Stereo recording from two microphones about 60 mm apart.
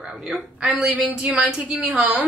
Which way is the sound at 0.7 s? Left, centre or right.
Centre.